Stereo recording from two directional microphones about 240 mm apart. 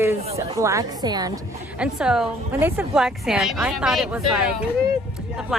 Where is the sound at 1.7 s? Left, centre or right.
Centre.